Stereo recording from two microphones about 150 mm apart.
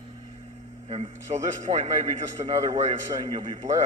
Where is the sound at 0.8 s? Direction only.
45° right (ahead or behind).